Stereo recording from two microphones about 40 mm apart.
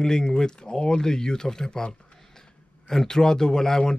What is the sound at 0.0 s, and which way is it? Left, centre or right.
A man's voice, centre.